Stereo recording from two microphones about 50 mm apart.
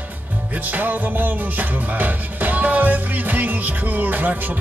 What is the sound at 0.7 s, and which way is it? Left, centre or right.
Music, right.